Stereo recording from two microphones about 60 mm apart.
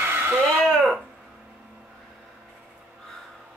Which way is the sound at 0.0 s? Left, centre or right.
Right.